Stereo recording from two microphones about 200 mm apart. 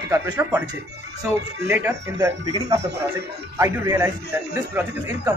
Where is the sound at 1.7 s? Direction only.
10° right (ahead or behind).